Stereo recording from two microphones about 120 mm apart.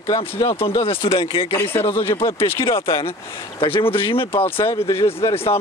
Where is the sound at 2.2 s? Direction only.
20° left (ahead or behind).